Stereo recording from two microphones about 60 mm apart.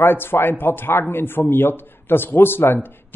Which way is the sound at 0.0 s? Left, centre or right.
Left.